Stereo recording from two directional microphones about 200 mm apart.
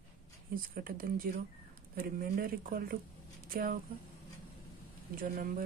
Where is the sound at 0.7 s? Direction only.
45° right (ahead or behind).